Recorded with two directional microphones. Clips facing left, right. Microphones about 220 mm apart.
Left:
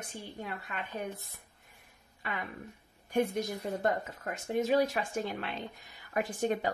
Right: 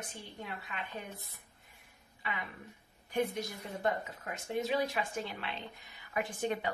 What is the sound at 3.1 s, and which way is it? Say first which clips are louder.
Speech: left 4 dB; 45° left (ahead or behind).